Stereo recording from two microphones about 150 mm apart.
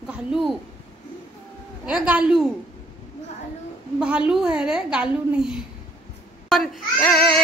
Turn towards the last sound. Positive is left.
turn(degrees=5)  # may be behind; listen again after turning